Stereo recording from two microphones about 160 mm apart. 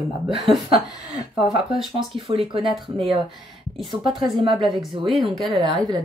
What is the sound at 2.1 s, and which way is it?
Speech, 35° right (ahead or behind).